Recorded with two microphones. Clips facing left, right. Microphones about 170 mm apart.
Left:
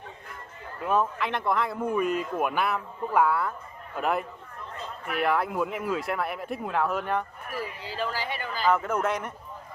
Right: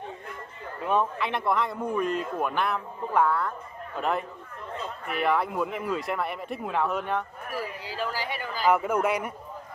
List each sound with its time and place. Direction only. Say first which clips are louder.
0.8 s speech: even; centre (ahead or behind)
7.8 s speech: even; 10° right (ahead or behind)